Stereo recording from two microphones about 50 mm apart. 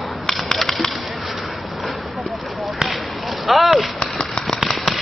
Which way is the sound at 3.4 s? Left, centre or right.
Centre.